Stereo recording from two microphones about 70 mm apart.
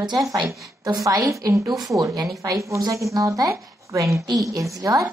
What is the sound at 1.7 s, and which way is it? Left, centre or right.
A woman's voice, right.